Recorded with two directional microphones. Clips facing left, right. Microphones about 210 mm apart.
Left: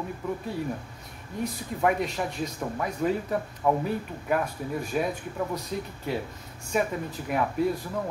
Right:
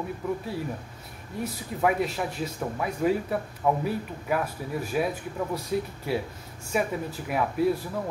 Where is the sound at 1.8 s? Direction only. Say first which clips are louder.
Right 1 dB; 5° right (ahead or behind).